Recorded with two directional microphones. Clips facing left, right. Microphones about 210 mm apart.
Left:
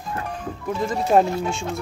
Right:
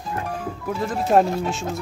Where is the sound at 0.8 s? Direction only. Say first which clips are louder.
Even; centre (ahead or behind).